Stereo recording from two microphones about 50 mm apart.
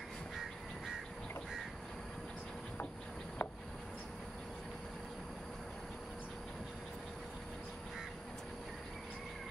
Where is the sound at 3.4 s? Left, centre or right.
Left.